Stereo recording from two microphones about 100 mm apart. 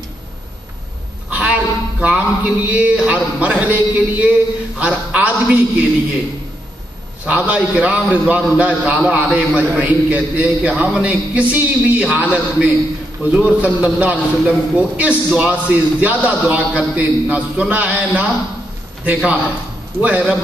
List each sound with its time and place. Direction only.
1.3 s a man's voice: 15° right (ahead or behind)
7.2 s a man's voice: 15° right (ahead or behind)